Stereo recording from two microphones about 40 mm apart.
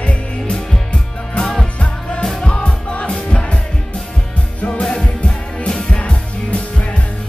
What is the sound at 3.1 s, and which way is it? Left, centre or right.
Music, centre.